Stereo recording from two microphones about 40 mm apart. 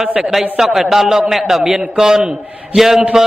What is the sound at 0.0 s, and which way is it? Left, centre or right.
Speech, right.